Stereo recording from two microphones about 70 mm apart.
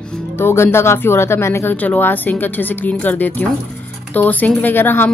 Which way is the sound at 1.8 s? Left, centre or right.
Left.